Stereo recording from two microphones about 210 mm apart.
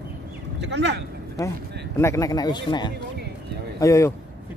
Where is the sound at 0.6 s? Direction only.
55° right (ahead or behind).